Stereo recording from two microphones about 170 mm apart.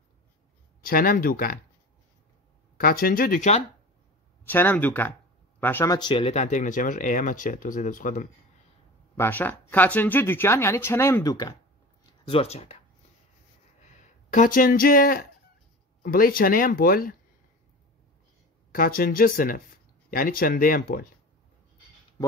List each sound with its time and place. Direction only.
0.8 s speech: 55° left (ahead or behind)
2.8 s speech: 60° left (ahead or behind)
4.5 s speech: 10° left (ahead or behind)
5.9 s speech: 30° left (ahead or behind); by 8.3 s 50° left (ahead or behind)
9.1 s speech: 15° left (ahead or behind)
12.3 s speech: 35° left (ahead or behind)
13.7 s speech: 45° left (ahead or behind)
18.7 s speech: 55° left (ahead or behind)